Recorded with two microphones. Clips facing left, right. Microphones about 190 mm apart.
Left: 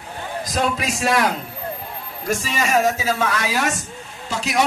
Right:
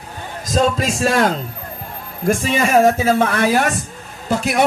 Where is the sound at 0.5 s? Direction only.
30° right (ahead or behind).